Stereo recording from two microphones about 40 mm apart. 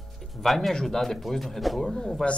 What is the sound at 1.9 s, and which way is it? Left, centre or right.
Speech, centre.